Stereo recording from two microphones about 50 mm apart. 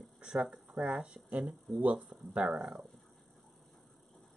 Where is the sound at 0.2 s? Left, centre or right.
Right.